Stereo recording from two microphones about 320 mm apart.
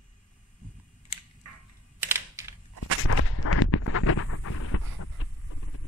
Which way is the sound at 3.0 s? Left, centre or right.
Left.